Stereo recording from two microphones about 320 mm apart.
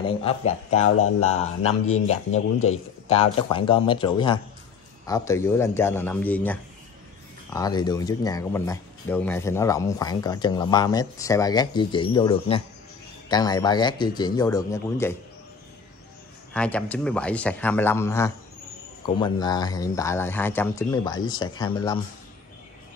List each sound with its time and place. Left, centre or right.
0.0 s speech: centre
0.8 s speech: left
1.4 s speech: centre
2.6 s speech: left
3.2 s speech: centre
16.5 s speech: centre